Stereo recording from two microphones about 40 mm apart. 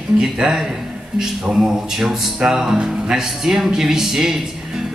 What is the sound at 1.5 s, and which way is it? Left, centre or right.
Music, centre.